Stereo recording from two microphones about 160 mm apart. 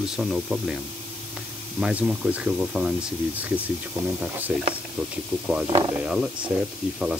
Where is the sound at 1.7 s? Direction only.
5° right (ahead or behind).